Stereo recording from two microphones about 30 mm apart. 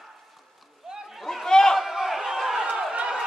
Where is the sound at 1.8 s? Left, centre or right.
Centre.